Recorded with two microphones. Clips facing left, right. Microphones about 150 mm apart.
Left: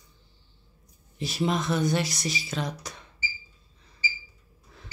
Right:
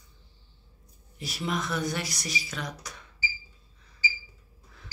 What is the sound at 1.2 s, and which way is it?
Speech, 25° left (ahead or behind).